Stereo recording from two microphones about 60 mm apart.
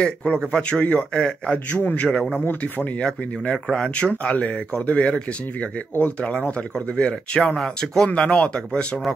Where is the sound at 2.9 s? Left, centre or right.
Centre.